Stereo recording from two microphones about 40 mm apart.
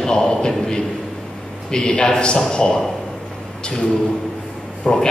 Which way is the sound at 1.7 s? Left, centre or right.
Left.